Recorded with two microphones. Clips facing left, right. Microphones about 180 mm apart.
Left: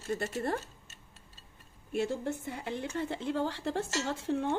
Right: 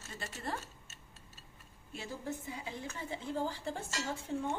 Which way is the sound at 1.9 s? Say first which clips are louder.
Left 9 dB; 65° left (ahead or behind).